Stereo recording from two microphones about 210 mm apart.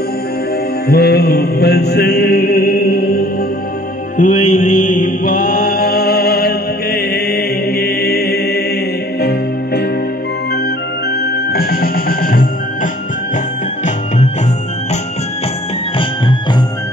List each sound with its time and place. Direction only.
0.8 s mantra: 50° left (ahead or behind)
4.2 s mantra: 35° left (ahead or behind)
9.2 s music: 50° left (ahead or behind)
11.5 s music: 45° left (ahead or behind)
16.0 s music: 25° left (ahead or behind)